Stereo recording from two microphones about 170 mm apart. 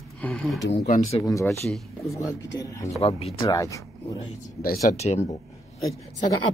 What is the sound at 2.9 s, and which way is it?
Speech, 35° left (ahead or behind).